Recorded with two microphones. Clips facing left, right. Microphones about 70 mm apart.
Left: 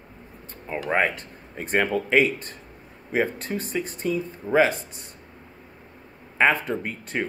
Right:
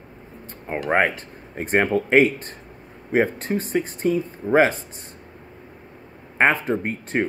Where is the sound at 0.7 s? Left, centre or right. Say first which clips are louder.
Right 3 dB; right.